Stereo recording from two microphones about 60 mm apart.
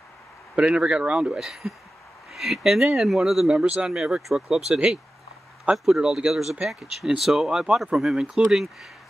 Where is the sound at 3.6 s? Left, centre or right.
Centre.